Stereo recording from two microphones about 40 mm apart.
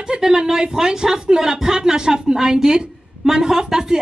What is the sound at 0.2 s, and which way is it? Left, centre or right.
Speech, centre.